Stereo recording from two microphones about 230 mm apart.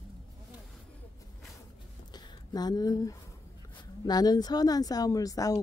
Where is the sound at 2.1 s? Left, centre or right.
Centre.